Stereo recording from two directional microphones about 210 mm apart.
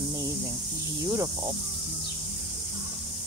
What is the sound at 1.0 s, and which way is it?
Speech, 15° right (ahead or behind).